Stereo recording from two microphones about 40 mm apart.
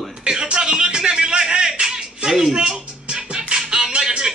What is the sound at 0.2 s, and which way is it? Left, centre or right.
Music, right.